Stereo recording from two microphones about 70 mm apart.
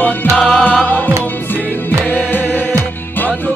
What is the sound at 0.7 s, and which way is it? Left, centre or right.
Music, left.